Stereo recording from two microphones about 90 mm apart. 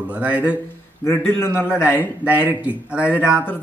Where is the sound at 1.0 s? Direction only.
25° left (ahead or behind).